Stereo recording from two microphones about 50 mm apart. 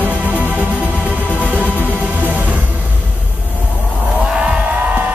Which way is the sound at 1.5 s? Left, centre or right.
Right.